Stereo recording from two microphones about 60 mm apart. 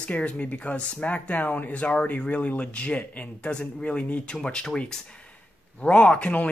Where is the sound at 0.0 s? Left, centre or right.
Left.